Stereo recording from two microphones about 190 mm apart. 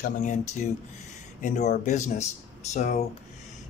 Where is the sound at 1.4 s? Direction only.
40° left (ahead or behind).